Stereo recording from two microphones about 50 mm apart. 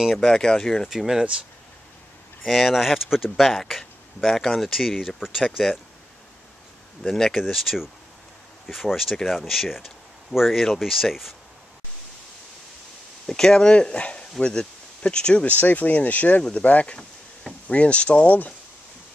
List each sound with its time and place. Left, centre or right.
0.2 s speech: centre
0.8 s speech: centre
2.4 s speech: centre
7.0 s speech: centre
13.3 s speech: centre
15.4 s speech: left